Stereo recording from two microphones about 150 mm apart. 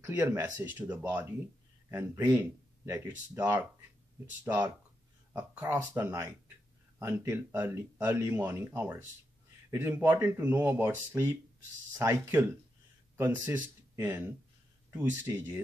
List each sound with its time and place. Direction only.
0.0 s speech: 15° right (ahead or behind)